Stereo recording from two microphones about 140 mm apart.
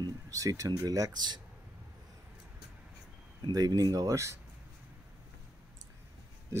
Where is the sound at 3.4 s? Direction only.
30° right (ahead or behind).